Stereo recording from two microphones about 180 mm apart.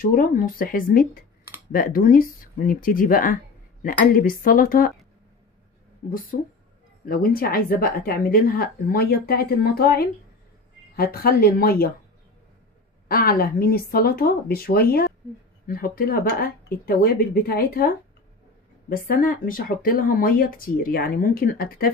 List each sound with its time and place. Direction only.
0.0 s speech: 50° left (ahead or behind)
7.1 s a woman's voice: 55° left (ahead or behind)
13.1 s a woman's voice: 55° left (ahead or behind)